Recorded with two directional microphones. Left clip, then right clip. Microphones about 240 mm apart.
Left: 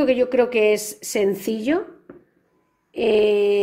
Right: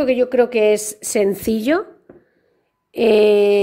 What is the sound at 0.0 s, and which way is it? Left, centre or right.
Speech, centre.